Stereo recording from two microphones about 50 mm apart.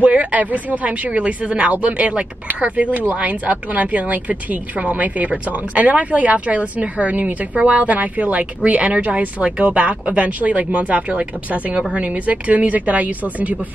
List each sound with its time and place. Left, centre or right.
0.0 s a woman's voice: right